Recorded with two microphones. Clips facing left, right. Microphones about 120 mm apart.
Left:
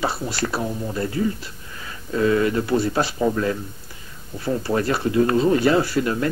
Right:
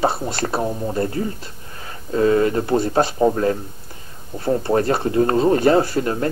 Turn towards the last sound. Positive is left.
turn(degrees=-35)  # may be behind; listen again after turning